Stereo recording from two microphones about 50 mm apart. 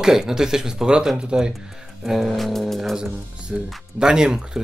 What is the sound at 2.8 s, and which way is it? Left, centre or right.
Speech, centre.